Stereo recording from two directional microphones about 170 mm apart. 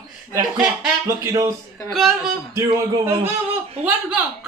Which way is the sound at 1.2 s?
20° right (ahead or behind).